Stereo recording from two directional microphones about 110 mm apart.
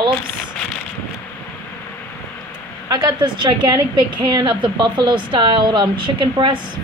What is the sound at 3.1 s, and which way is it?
A woman's voice, 40° right (ahead or behind).